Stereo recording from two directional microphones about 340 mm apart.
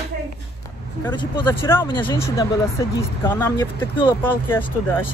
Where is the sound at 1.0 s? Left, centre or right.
Centre.